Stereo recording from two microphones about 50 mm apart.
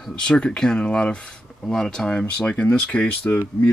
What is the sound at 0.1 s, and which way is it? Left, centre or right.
Speech, centre.